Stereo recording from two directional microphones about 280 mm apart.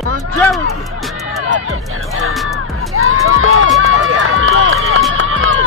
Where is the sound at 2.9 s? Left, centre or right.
Right.